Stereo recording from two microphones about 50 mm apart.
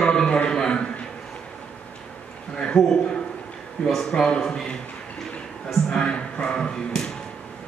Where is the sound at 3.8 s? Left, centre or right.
Centre.